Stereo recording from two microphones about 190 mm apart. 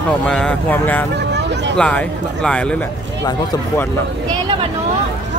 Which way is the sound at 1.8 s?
5° left (ahead or behind).